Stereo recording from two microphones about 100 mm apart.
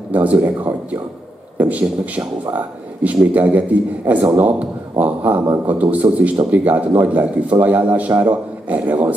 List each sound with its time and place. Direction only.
0.1 s speech: 15° right (ahead or behind)